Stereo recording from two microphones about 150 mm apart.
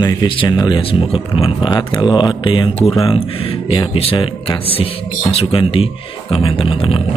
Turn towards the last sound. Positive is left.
turn(degrees=35)  # may be behind; listen again after turning